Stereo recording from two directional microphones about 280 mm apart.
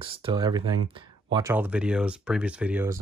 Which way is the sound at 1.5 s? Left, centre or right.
Centre.